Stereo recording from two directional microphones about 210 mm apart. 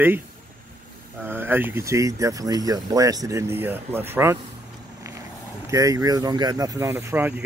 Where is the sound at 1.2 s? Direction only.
10° right (ahead or behind).